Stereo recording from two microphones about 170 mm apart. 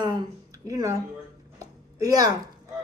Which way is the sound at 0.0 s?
20° right (ahead or behind).